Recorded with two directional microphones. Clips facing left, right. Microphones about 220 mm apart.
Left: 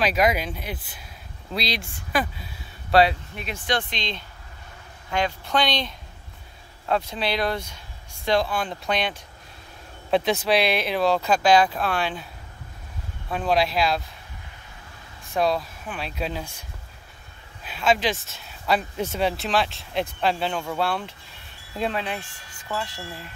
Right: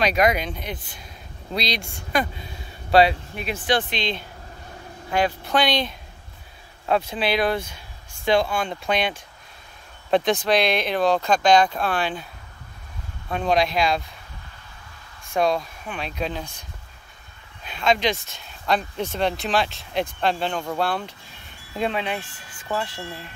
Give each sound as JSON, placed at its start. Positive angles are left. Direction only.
{"t": 0.0, "sound": "speech", "side_deg": 5}
{"t": 5.1, "sound": "speech", "side_deg": -10}
{"t": 10.1, "sound": "speech", "side_deg": 5}
{"t": 13.3, "sound": "speech", "side_deg": 5}
{"t": 15.3, "sound": "speech", "side_deg": 5}
{"t": 17.6, "sound": "speech", "side_deg": 5}
{"t": 22.7, "sound": "speech", "side_deg": -25}